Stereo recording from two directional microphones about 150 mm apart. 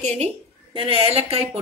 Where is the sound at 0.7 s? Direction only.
40° right (ahead or behind).